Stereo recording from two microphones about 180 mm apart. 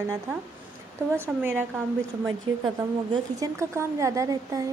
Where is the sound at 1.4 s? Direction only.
10° right (ahead or behind).